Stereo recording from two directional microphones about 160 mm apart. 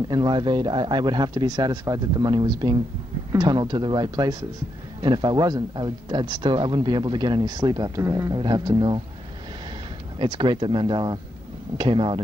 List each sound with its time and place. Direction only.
0.1 s speech: 25° right (ahead or behind)
10.1 s speech: 30° right (ahead or behind)